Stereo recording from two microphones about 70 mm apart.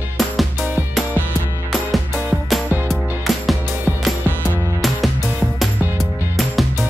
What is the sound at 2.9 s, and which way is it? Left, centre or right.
Music, centre.